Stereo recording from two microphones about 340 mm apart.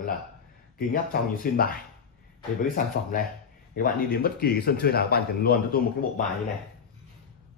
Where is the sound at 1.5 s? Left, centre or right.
Left.